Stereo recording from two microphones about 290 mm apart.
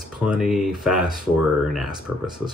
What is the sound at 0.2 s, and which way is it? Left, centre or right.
Speech, centre.